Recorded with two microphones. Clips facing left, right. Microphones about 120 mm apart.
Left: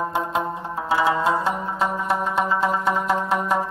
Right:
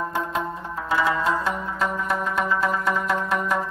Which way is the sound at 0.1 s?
20° left (ahead or behind).